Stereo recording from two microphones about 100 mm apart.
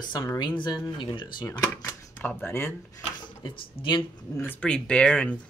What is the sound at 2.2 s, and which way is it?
Speech, 20° left (ahead or behind).